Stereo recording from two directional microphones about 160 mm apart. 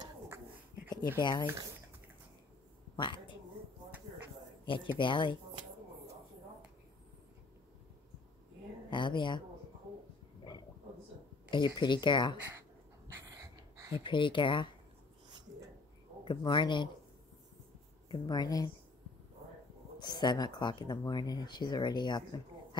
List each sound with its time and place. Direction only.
1.2 s speech: 30° left (ahead or behind)
3.0 s a woman's voice: 30° left (ahead or behind)
4.6 s speech: 30° left (ahead or behind)
8.9 s speech: 30° left (ahead or behind)
11.5 s speech: 30° left (ahead or behind)
13.1 s a sound: 20° right (ahead or behind)
14.0 s speech: 30° left (ahead or behind)
16.3 s speech: 30° left (ahead or behind)
18.0 s speech: 25° left (ahead or behind)
20.0 s speech: 25° left (ahead or behind)